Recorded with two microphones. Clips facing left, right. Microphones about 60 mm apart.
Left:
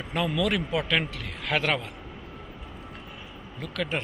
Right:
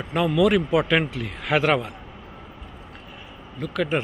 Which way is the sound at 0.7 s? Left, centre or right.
Right.